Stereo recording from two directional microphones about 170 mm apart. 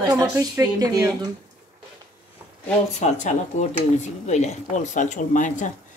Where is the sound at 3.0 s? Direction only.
45° left (ahead or behind).